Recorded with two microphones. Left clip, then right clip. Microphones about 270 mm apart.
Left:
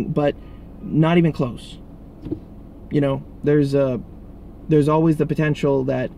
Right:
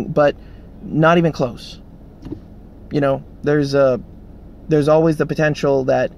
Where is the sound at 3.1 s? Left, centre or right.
Left.